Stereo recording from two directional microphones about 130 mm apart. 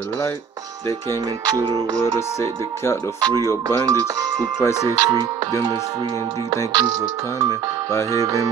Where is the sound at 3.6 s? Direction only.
25° right (ahead or behind).